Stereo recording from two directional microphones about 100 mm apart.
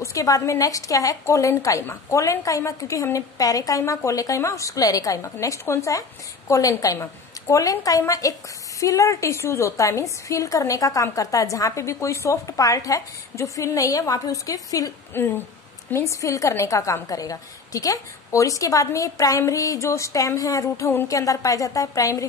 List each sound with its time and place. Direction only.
0.0 s a woman's voice: 35° left (ahead or behind)
15.1 s a woman's voice: 20° left (ahead or behind)